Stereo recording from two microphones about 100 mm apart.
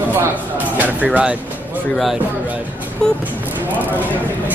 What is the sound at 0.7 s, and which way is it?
Speech, 15° right (ahead or behind).